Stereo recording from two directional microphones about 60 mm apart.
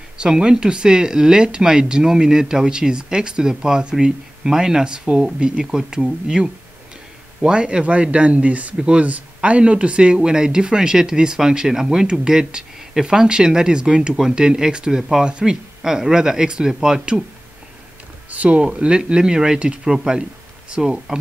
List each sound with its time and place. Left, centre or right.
0.2 s a man's voice: centre
18.3 s a man's voice: right